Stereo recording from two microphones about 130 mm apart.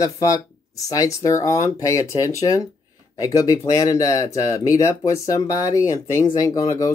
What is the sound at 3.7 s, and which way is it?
Speech, 25° left (ahead or behind).